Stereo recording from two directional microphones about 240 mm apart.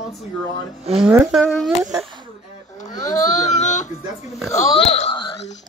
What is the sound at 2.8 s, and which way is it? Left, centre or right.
Baby cry, centre.